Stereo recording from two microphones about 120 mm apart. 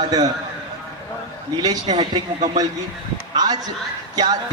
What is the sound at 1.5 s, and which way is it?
Speech, 35° right (ahead or behind).